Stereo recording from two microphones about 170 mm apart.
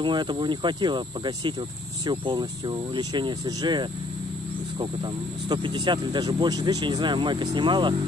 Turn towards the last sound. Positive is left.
turn(degrees=-30)  # may be behind; listen again after turning